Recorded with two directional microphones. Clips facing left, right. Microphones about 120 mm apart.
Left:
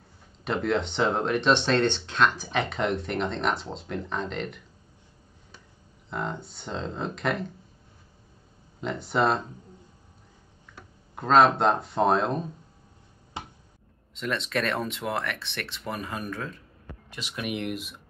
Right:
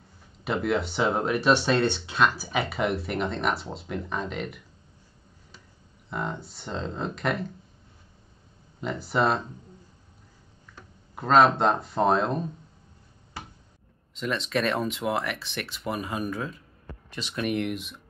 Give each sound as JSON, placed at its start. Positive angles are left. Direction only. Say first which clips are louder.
{"t": 0.4, "sound": "speech", "louder": "even", "side_deg": -5}
{"t": 6.0, "sound": "speech", "louder": "even", "side_deg": 0}
{"t": 8.8, "sound": "speech", "louder": "even", "side_deg": 0}
{"t": 11.1, "sound": "speech", "louder": "even", "side_deg": 0}
{"t": 13.4, "sound": "a sound", "louder": "left 2 dB", "side_deg": 20}
{"t": 14.1, "sound": "speech", "louder": "right 1 dB", "side_deg": 0}
{"t": 17.1, "sound": "speech", "louder": "right 4 dB", "side_deg": 5}